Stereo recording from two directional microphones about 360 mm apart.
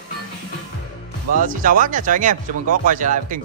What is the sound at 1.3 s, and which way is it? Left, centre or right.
Speech, right.